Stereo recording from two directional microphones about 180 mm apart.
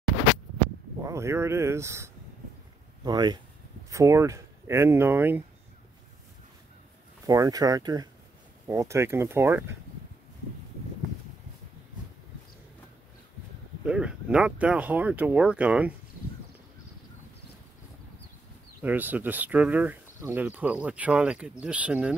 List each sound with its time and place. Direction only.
1.0 s speech: 15° right (ahead or behind)
7.2 s speech: 20° right (ahead or behind)
13.8 s speech: 5° right (ahead or behind)
18.8 s speech: 10° right (ahead or behind)